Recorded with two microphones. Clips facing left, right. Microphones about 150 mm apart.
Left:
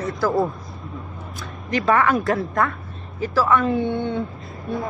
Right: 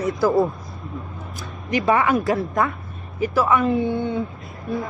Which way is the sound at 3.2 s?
15° right (ahead or behind).